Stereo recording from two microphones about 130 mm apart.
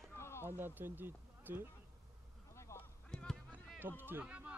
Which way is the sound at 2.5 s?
20° left (ahead or behind).